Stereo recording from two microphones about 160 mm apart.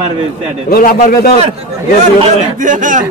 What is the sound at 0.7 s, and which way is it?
Speech, 65° left (ahead or behind).